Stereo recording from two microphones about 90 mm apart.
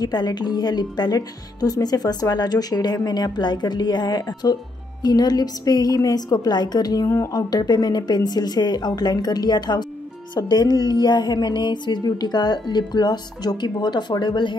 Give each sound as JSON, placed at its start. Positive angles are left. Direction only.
{"t": 0.0, "sound": "a woman's voice", "side_deg": 50}
{"t": 7.1, "sound": "speech", "side_deg": 30}
{"t": 7.5, "sound": "a woman's voice", "side_deg": 45}